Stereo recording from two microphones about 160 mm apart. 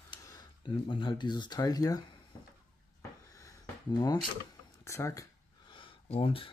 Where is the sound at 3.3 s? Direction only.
20° left (ahead or behind).